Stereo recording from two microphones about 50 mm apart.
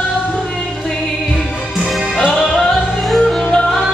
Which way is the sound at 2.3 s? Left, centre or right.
Centre.